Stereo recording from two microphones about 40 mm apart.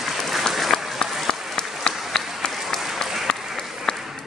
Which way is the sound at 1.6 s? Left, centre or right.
Centre.